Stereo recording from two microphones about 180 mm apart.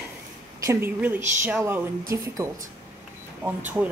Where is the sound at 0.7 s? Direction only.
10° right (ahead or behind).